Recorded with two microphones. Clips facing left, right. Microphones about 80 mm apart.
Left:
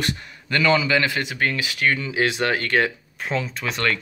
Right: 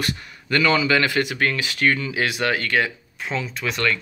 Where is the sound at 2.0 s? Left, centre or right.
Left.